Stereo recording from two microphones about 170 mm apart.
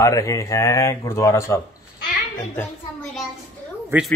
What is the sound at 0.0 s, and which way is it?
Speech, 20° left (ahead or behind).